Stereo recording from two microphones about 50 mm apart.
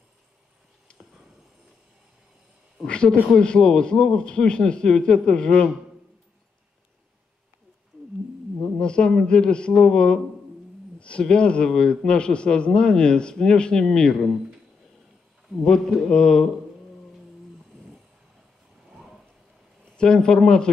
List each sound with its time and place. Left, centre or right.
2.9 s speech: centre
8.7 s a sound: centre
9.2 s a man's voice: centre
16.1 s a man's voice: centre
19.8 s speech: centre